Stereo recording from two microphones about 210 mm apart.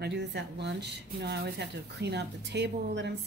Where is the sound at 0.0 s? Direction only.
55° right (ahead or behind).